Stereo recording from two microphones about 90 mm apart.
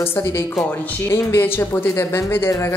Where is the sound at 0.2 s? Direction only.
35° left (ahead or behind).